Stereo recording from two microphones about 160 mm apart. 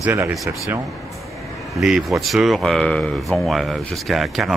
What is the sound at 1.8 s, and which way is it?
Speech, centre (ahead or behind).